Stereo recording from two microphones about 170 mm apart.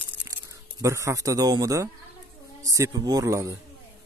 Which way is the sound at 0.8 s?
15° right (ahead or behind).